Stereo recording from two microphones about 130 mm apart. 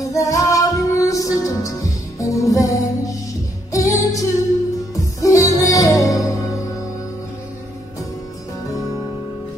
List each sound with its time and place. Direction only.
0.0 s music: 25° left (ahead or behind)